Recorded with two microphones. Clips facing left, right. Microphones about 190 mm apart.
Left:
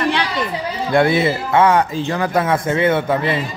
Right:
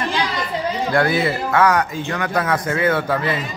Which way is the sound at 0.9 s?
25° left (ahead or behind).